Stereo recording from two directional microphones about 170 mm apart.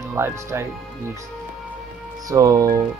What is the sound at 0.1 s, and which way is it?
Speech, 15° right (ahead or behind).